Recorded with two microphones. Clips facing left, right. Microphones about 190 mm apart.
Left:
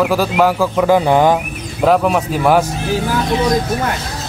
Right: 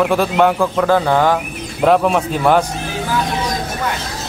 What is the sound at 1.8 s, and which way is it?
Speech, centre (ahead or behind).